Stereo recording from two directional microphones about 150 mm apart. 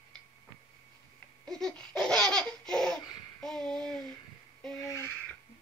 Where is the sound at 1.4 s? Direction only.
5° left (ahead or behind).